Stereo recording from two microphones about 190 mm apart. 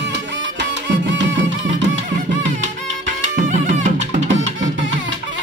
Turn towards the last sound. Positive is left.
turn(degrees=-40)  # may be behind; listen again after turning